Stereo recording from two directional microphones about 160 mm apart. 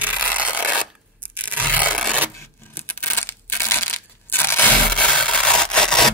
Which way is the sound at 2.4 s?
10° left (ahead or behind).